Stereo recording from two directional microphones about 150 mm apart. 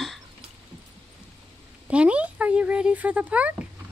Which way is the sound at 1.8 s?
10° right (ahead or behind).